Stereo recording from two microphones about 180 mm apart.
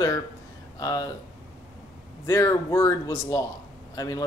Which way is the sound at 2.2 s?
15° left (ahead or behind).